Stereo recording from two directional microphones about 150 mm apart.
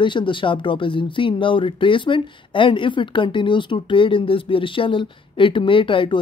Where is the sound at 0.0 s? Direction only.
30° left (ahead or behind).